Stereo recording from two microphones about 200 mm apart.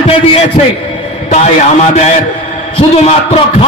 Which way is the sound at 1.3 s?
35° left (ahead or behind).